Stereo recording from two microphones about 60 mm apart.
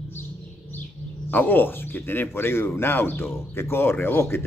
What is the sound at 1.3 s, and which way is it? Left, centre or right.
Speech, left.